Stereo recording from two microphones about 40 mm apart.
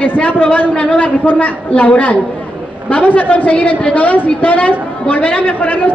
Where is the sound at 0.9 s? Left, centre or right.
Left.